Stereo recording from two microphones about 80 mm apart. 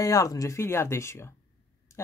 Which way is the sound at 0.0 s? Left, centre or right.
Left.